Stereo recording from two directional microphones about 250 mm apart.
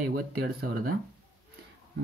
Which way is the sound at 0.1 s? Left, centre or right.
Right.